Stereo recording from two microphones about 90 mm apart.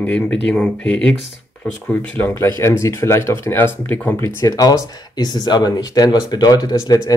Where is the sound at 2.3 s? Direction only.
30° left (ahead or behind).